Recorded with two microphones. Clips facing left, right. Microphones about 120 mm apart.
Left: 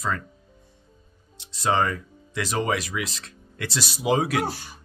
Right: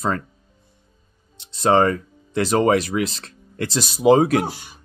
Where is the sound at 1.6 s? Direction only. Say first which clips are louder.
Right 7 dB; 40° right (ahead or behind).